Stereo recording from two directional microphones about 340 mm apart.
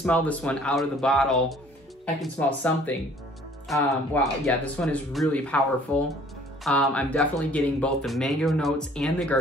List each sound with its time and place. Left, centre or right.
0.0 s speech: centre
6.6 s speech: centre